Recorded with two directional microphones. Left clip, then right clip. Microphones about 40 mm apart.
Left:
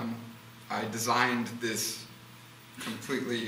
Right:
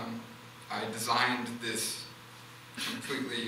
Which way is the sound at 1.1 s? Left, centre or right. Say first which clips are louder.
Left 1 dB; centre.